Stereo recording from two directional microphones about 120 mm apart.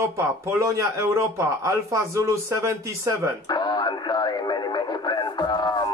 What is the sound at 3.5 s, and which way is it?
Radio, 35° left (ahead or behind).